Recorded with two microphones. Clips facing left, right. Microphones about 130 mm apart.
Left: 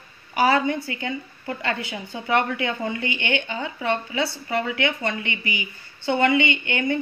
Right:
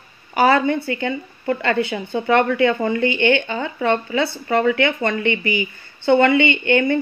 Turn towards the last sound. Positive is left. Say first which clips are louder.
# right 7 dB
turn(degrees=-60)  # may be behind; listen again after turning